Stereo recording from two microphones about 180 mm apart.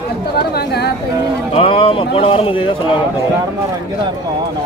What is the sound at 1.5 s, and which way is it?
Speech, 30° left (ahead or behind).